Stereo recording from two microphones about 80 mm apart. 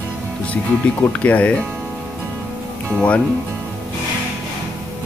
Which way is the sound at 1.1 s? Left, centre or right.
Centre.